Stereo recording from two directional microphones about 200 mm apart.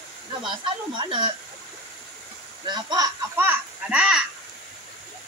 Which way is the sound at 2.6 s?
20° right (ahead or behind).